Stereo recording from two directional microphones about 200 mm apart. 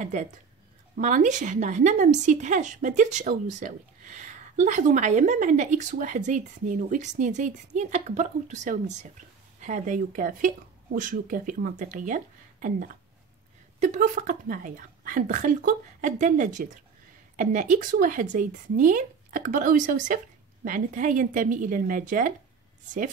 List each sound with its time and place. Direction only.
0.0 s a woman's voice: 40° right (ahead or behind)